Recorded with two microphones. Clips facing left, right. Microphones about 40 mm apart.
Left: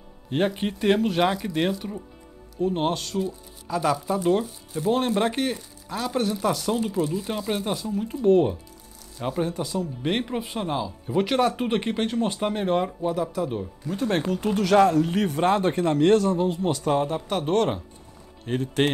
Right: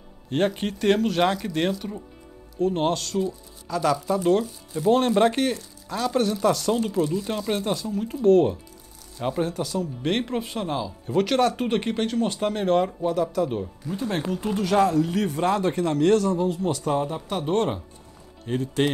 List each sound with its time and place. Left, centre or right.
0.3 s speech: centre
4.2 s speech: centre
9.5 s speech: centre
14.2 s speech: left